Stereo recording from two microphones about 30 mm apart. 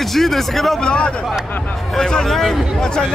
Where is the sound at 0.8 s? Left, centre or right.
Left.